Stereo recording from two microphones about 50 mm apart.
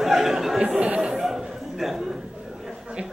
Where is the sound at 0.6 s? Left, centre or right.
Right.